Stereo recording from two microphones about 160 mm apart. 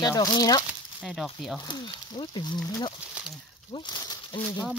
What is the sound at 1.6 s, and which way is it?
Speech, 30° left (ahead or behind).